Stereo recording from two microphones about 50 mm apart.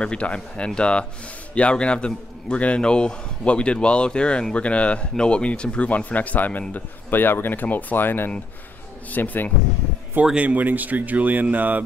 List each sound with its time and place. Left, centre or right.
0.0 s a man's voice: left
10.3 s speech: right